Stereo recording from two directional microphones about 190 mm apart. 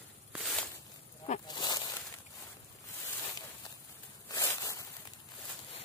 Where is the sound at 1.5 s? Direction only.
20° left (ahead or behind).